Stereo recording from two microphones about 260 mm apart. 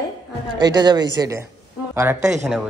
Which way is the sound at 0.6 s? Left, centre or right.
Centre.